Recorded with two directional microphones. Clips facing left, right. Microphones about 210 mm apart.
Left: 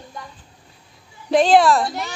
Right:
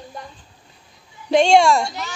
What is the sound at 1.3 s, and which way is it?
Speech, centre (ahead or behind).